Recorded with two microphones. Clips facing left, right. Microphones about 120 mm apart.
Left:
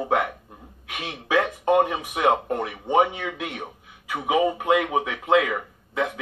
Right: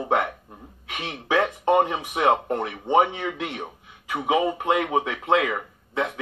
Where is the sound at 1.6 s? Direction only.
5° left (ahead or behind).